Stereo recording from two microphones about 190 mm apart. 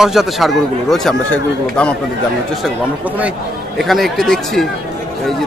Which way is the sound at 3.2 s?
5° right (ahead or behind).